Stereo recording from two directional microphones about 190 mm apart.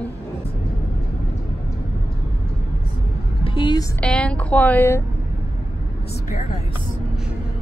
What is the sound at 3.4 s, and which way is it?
Music, 25° left (ahead or behind).